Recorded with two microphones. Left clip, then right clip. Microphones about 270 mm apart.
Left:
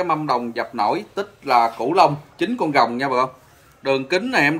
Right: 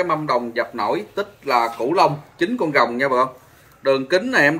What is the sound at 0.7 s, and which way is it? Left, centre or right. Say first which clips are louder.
Speech: left 1 dB; left.